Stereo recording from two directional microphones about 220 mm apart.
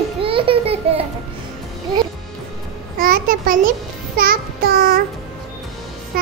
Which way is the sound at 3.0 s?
40° right (ahead or behind).